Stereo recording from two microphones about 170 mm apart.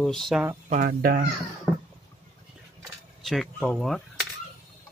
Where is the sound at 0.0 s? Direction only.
Centre (ahead or behind).